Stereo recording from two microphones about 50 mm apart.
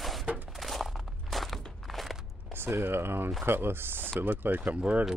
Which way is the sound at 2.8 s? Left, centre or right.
Right.